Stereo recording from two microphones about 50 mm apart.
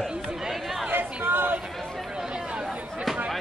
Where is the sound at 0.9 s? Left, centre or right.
Right.